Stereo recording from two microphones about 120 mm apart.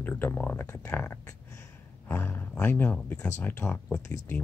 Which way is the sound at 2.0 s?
15° left (ahead or behind).